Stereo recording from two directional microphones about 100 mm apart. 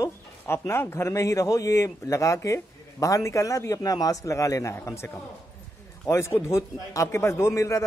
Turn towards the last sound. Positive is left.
turn(degrees=30)  # may be behind; listen again after turning